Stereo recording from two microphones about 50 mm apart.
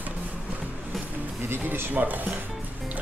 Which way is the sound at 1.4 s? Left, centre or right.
Right.